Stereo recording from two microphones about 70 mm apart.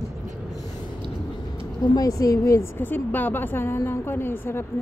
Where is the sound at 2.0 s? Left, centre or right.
Left.